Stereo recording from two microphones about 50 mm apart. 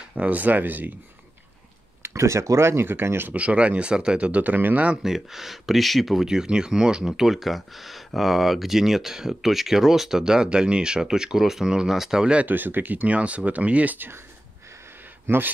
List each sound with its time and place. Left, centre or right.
0.1 s speech: right
2.0 s speech: right
3.3 s speech: right
5.0 s speech: centre
12.4 s speech: right
13.9 s speech: right
15.2 s speech: right